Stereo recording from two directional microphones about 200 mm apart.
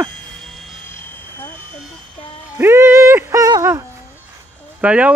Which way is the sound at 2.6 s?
10° right (ahead or behind).